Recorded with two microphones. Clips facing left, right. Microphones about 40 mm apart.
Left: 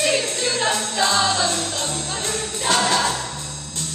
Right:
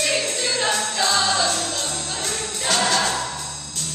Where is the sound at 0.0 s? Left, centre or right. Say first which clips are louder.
Left 2 dB; centre.